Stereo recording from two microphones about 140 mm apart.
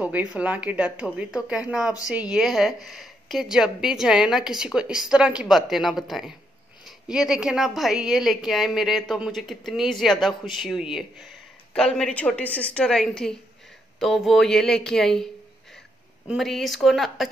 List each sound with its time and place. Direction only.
0.0 s a woman's voice: 10° right (ahead or behind)
16.3 s a woman's voice: centre (ahead or behind)